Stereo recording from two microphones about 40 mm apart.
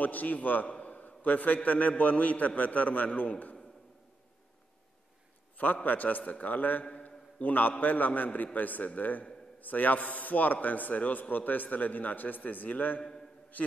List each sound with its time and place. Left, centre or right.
0.0 s a man's voice: left
5.9 s a man's voice: left
7.0 s a sound: left
7.8 s a man's voice: left